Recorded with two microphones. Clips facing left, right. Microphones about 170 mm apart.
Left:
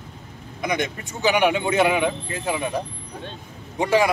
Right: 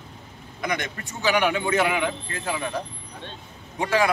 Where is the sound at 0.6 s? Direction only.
20° left (ahead or behind).